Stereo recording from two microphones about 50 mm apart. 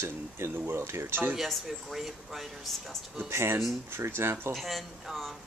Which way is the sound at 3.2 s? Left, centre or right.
Right.